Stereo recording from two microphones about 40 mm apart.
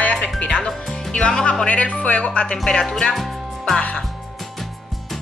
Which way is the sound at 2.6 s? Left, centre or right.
Centre.